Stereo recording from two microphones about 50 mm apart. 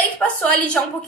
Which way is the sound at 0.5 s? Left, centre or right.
Left.